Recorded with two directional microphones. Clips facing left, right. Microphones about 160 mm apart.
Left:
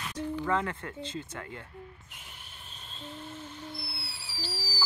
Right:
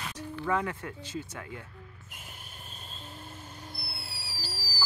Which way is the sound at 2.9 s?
10° right (ahead or behind).